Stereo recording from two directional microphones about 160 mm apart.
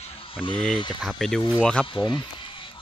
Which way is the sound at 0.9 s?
Centre (ahead or behind).